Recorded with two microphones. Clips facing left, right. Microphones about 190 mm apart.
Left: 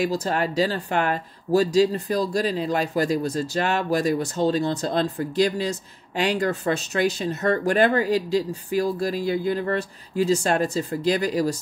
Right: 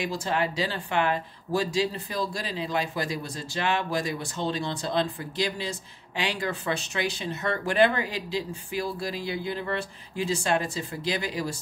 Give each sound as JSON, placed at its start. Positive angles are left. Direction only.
{"t": 0.0, "sound": "speech", "side_deg": 40}